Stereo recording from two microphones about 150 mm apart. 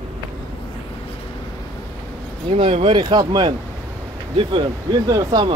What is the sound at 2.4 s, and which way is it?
Speech, 40° right (ahead or behind).